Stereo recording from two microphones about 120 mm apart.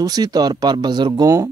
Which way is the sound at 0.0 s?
35° right (ahead or behind).